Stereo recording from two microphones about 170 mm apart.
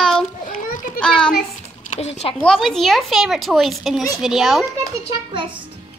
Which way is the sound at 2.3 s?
Centre (ahead or behind).